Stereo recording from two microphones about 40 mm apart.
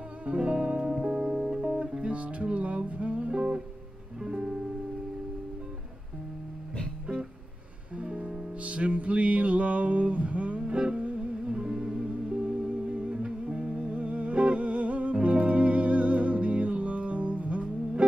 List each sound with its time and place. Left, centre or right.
0.2 s music: right
8.0 s music: right
11.4 s music: right